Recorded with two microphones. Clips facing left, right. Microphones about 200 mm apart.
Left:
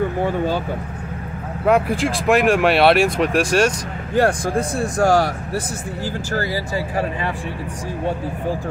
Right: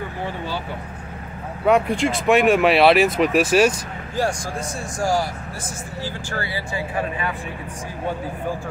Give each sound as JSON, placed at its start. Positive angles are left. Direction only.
{"t": 1.7, "sound": "speech", "side_deg": 0}
{"t": 4.1, "sound": "speech", "side_deg": 60}
{"t": 6.3, "sound": "speech", "side_deg": 40}